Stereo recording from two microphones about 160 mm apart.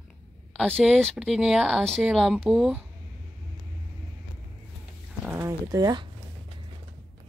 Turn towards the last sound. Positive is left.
turn(degrees=-25)  # may be behind; listen again after turning